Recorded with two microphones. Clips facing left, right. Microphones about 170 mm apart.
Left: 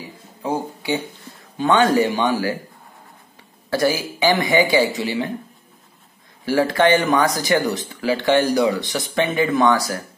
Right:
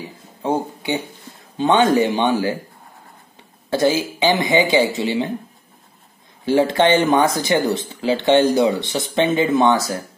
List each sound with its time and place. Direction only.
0.4 s a sound: 20° right (ahead or behind)
1.6 s speech: 20° right (ahead or behind)
3.7 s speech: 20° right (ahead or behind)
6.4 s speech: 20° right (ahead or behind)